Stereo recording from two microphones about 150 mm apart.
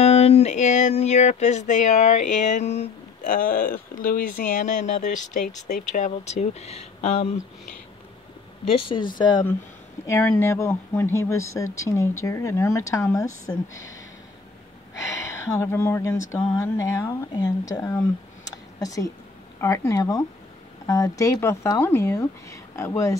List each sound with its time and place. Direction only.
0.0 s a sound: 45° left (ahead or behind)
3.3 s speech: 70° left (ahead or behind); by 7.3 s 45° left (ahead or behind)
8.7 s speech: 35° left (ahead or behind)
10.0 s speech: 15° left (ahead or behind)
15.0 s speech: 20° left (ahead or behind)